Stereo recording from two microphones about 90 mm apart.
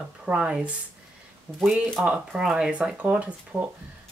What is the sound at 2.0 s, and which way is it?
Speech, 5° right (ahead or behind).